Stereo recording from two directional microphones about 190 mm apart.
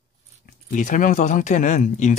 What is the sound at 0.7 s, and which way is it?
Speech, 45° left (ahead or behind).